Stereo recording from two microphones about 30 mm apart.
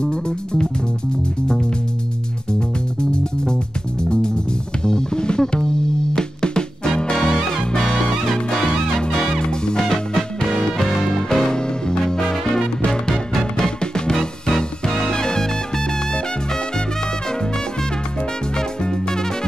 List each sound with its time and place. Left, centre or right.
0.0 s music: left
4.8 s music: left
13.1 s music: centre
13.7 s music: left
14.1 s music: centre
15.1 s music: left
18.9 s music: left